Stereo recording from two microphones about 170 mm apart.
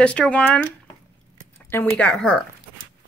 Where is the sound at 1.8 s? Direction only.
5° left (ahead or behind).